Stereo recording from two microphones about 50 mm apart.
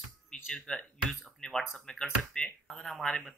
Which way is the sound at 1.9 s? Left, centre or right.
Centre.